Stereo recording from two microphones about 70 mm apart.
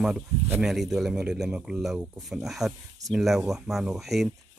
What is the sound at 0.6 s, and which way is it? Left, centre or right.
Speech, centre.